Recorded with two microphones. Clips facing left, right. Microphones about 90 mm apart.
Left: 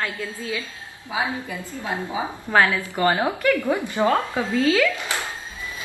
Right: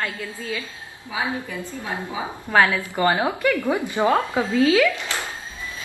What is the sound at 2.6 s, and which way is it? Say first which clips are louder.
A woman's voice: right 1 dB; 20° right (ahead or behind).